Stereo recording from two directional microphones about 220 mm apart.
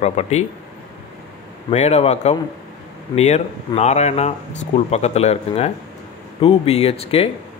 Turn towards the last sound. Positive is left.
turn(degrees=25)  # may be behind; listen again after turning